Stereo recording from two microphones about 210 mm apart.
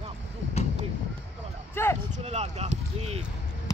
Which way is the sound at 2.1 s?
30° right (ahead or behind).